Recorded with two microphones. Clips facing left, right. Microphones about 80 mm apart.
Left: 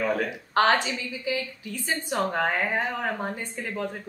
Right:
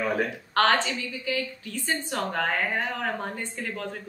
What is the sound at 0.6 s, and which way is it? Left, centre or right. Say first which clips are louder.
A woman's voice: left 1 dB; centre.